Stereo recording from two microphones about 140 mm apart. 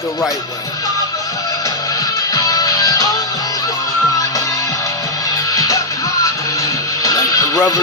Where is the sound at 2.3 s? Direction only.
25° left (ahead or behind).